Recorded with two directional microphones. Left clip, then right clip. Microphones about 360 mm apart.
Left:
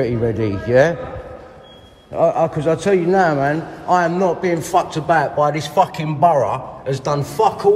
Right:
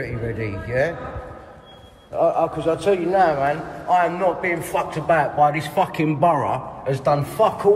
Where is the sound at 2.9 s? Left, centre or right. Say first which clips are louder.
Left 2 dB; left.